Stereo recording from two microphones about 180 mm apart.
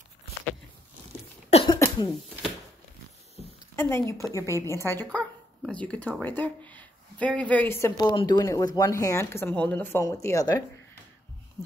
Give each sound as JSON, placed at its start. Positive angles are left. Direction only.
{"t": 1.7, "sound": "cough", "side_deg": 20}
{"t": 3.7, "sound": "a woman's voice", "side_deg": 15}
{"t": 5.0, "sound": "speech", "side_deg": 0}